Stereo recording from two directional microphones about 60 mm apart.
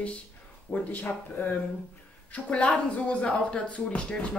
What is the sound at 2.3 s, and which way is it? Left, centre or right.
Speech, left.